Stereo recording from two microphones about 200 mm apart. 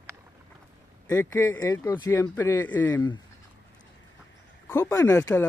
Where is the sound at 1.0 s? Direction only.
15° left (ahead or behind).